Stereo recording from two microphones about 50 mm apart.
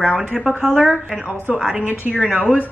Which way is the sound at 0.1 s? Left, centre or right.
Centre.